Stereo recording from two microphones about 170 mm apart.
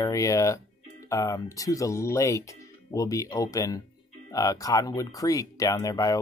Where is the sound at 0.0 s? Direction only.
20° left (ahead or behind).